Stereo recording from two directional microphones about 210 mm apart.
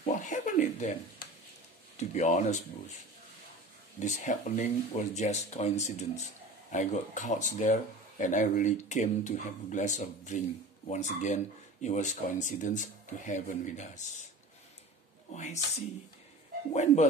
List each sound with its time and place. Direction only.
0.0 s speech: 35° left (ahead or behind)
4.0 s speech: 35° left (ahead or behind)
15.3 s speech: 35° left (ahead or behind)